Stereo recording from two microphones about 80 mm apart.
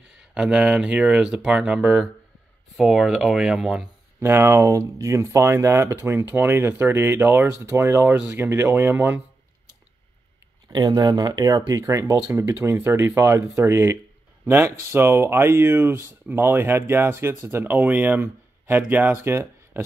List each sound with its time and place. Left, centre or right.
0.2 s speech: centre
4.2 s speech: right
6.2 s speech: right
11.0 s speech: right
19.2 s a sound: right